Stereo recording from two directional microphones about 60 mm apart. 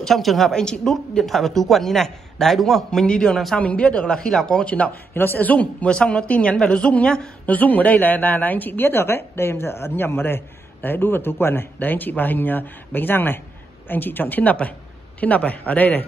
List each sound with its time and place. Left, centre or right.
0.0 s speech: centre
3.5 s speech: left
5.1 s a woman's voice: left